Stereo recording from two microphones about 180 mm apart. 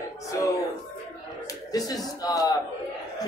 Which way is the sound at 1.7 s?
20° left (ahead or behind).